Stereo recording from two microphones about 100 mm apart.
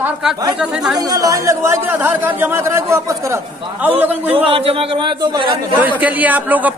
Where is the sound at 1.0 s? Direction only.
40° right (ahead or behind).